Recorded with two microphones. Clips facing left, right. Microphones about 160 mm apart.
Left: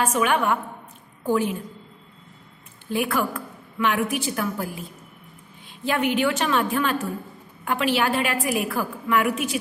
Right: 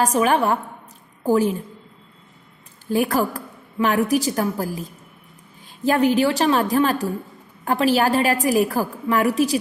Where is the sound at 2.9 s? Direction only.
40° right (ahead or behind).